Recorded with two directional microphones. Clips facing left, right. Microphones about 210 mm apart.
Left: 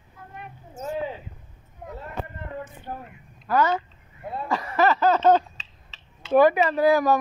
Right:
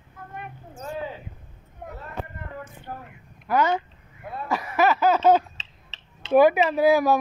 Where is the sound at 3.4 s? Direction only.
15° right (ahead or behind).